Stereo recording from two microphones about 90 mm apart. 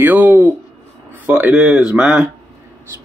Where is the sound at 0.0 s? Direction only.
20° right (ahead or behind).